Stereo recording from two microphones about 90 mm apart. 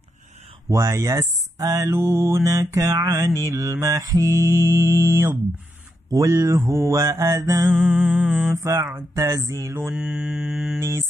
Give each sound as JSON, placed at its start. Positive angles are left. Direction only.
{"t": 0.7, "sound": "speech", "side_deg": -35}
{"t": 6.1, "sound": "speech", "side_deg": -45}
{"t": 7.7, "sound": "mantra", "side_deg": 0}
{"t": 8.5, "sound": "speech", "side_deg": -30}
{"t": 9.9, "sound": "mantra", "side_deg": -5}
{"t": 10.8, "sound": "speech", "side_deg": -30}